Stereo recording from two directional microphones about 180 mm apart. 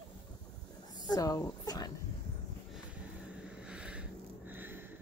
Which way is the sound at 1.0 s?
20° left (ahead or behind).